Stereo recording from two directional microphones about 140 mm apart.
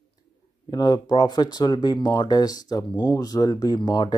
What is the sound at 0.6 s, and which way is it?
Speech, 30° left (ahead or behind).